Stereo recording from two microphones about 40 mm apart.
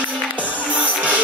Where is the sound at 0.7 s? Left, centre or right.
Right.